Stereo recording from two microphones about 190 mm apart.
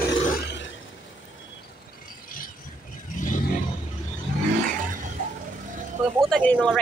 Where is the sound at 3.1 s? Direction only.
45° left (ahead or behind).